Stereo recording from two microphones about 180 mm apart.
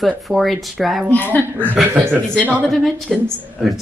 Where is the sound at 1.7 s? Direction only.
10° right (ahead or behind).